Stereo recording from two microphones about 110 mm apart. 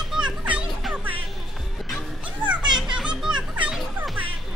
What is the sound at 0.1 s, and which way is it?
Music, 10° right (ahead or behind).